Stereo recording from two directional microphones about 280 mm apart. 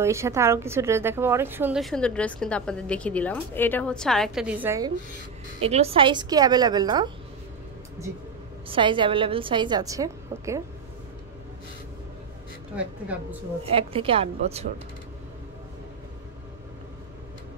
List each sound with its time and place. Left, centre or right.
0.0 s a woman's voice: centre
5.6 s a woman's voice: right
8.6 s a woman's voice: centre
13.7 s a woman's voice: centre